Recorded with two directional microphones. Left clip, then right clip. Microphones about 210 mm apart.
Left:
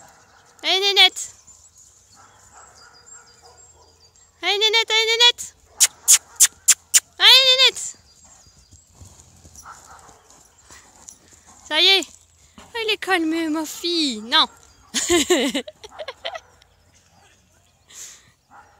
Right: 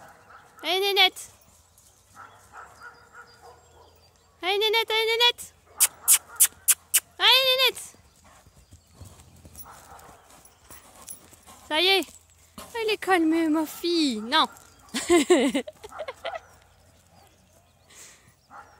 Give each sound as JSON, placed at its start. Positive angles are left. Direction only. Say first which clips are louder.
{"t": 0.6, "sound": "speech", "louder": "left 6 dB", "side_deg": 5}
{"t": 2.2, "sound": "dog", "louder": "right 5 dB", "side_deg": 15}
{"t": 4.4, "sound": "a sound", "louder": "left 5 dB", "side_deg": 5}
{"t": 11.0, "sound": "dog", "louder": "left 2 dB", "side_deg": -20}
{"t": 11.6, "sound": "speech", "louder": "left 6 dB", "side_deg": 0}
{"t": 17.8, "sound": "a sound", "louder": "left 9 dB", "side_deg": 5}